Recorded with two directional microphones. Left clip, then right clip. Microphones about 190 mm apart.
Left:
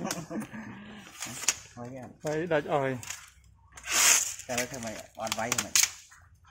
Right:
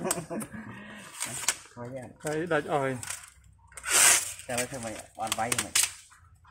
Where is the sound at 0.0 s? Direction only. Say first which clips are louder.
Right 3 dB; 10° left (ahead or behind).